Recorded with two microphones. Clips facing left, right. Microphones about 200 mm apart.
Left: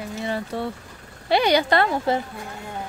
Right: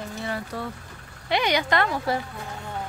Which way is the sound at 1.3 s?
35° left (ahead or behind).